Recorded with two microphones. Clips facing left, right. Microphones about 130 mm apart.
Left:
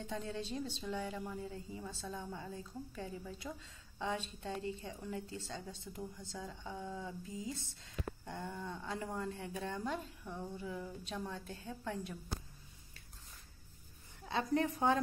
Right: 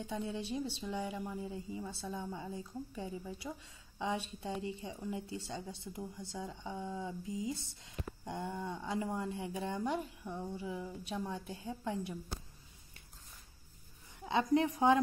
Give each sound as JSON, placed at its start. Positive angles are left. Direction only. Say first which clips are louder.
{"t": 0.0, "sound": "a woman's voice", "louder": "right 2 dB", "side_deg": -15}
{"t": 14.2, "sound": "a woman's voice", "louder": "right 4 dB", "side_deg": -20}